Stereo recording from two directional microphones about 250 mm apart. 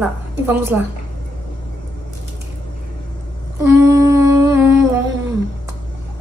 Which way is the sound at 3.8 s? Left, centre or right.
Centre.